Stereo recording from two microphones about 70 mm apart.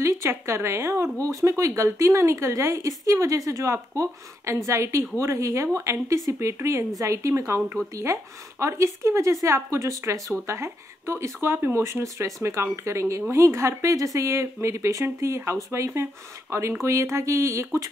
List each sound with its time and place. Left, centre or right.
0.0 s a woman's voice: right
10.3 s a woman's voice: right